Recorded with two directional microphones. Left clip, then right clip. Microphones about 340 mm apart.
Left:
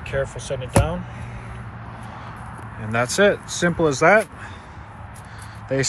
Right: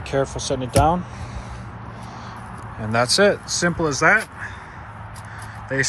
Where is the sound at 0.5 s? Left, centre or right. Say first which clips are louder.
Right 4 dB; right.